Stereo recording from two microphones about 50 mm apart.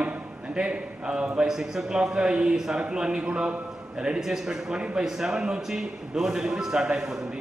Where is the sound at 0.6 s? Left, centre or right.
Centre.